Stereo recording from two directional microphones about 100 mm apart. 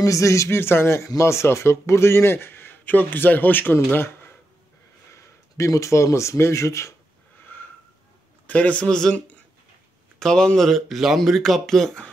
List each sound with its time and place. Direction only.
0.0 s speech: 30° left (ahead or behind)
8.5 s speech: 15° left (ahead or behind)